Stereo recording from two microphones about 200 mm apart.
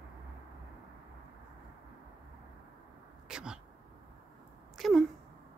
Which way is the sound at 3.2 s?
5° right (ahead or behind).